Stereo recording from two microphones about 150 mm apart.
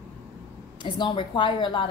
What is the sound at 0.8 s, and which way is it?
A woman's voice, 30° left (ahead or behind).